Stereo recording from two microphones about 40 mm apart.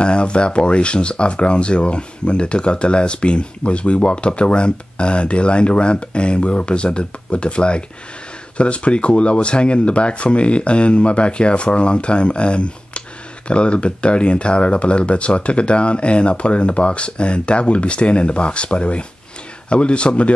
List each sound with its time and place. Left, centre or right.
0.0 s speech: left